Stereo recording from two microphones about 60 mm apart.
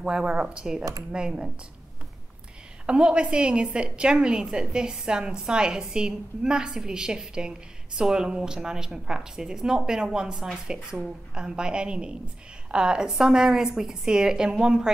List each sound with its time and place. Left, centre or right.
0.0 s a woman's voice: centre
2.9 s a woman's voice: centre